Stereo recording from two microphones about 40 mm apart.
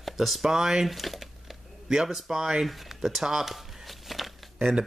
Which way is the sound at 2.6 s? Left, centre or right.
Centre.